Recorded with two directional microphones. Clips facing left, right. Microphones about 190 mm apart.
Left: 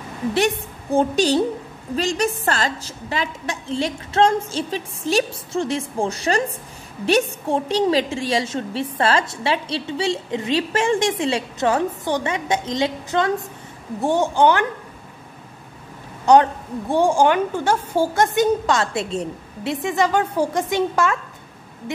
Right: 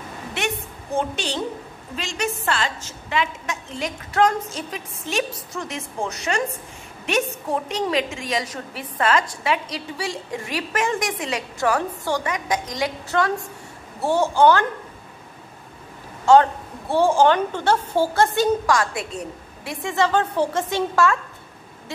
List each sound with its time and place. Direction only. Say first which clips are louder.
0.9 s a woman's voice: left 8 dB; 40° left (ahead or behind); by 14.7 s 15° left (ahead or behind)
16.3 s a woman's voice: left 1 dB; 20° left (ahead or behind)